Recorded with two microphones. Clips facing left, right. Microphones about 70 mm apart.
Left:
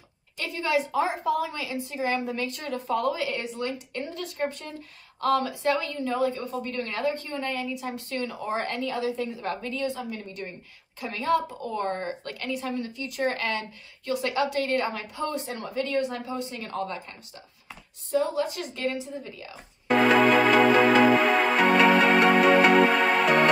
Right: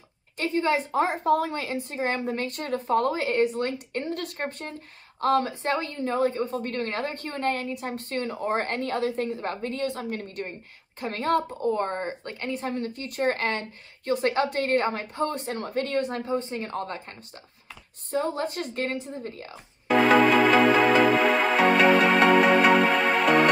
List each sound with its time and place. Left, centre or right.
0.4 s a woman's voice: right
9.4 s speech: right
9.8 s a woman's voice: right
11.6 s speech: right
16.3 s speech: right
18.1 s a woman's voice: right
19.9 s music: centre